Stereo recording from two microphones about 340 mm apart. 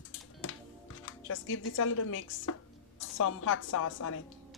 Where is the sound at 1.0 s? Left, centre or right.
Left.